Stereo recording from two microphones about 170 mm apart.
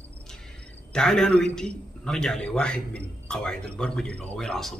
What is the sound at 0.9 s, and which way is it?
A man's voice, 5° left (ahead or behind).